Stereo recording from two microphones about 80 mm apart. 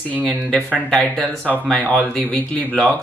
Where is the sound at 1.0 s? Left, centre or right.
Centre.